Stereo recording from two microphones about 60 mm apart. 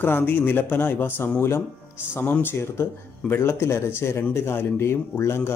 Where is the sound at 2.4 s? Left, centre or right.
Left.